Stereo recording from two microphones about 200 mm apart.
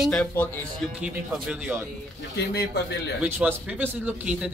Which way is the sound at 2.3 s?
55° left (ahead or behind).